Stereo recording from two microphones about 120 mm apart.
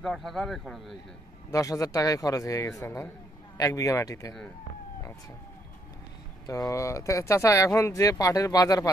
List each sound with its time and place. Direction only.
0.0 s speech: centre (ahead or behind)
1.5 s speech: 30° left (ahead or behind)
6.4 s speech: 30° left (ahead or behind)